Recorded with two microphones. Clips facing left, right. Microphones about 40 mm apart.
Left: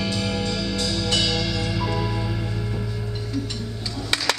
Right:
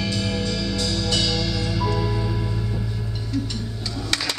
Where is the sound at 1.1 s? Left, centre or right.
Centre.